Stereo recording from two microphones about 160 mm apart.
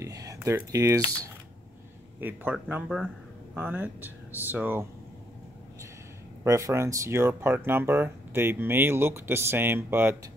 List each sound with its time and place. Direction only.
0.0 s speech: 20° right (ahead or behind)
2.1 s a man's voice: 10° right (ahead or behind)
3.5 s speech: 10° right (ahead or behind)
6.4 s speech: 20° right (ahead or behind)